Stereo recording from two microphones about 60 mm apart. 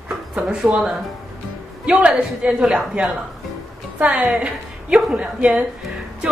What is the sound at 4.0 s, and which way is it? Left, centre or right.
A woman's voice, right.